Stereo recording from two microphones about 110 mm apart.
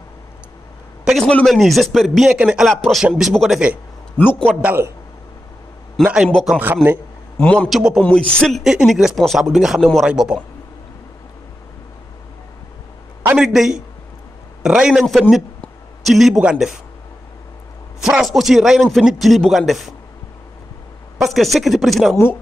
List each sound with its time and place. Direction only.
1.0 s a sound: centre (ahead or behind)
1.3 s speech: centre (ahead or behind)
4.2 s a man's voice: 15° left (ahead or behind)
4.6 s a man's voice: 15° right (ahead or behind)
6.0 s a man's voice: 5° right (ahead or behind)
6.3 s speech: 5° left (ahead or behind)
6.6 s a man's voice: 20° right (ahead or behind)
7.3 s a man's voice: 15° left (ahead or behind)
7.7 s a man's voice: 5° right (ahead or behind)
8.0 s speech: 10° left (ahead or behind); by 10.4 s 10° right (ahead or behind)
13.4 s speech: 5° right (ahead or behind)
18.0 s speech: centre (ahead or behind)
21.2 s speech: centre (ahead or behind)
22.1 s speech: 20° left (ahead or behind)